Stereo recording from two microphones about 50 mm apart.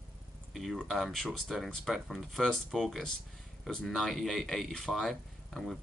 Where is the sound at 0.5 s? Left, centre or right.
Centre.